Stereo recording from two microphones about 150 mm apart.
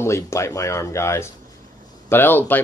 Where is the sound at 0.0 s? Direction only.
20° left (ahead or behind).